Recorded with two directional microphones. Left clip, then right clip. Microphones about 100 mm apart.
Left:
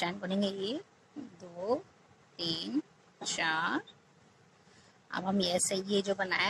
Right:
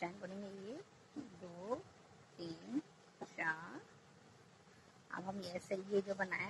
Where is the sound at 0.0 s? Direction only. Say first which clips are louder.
Left 13 dB; 35° left (ahead or behind).